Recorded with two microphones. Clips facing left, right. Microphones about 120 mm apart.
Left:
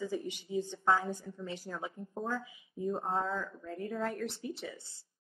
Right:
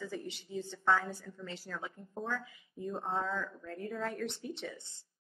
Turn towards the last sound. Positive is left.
turn(degrees=0)  # may be behind; listen again after turning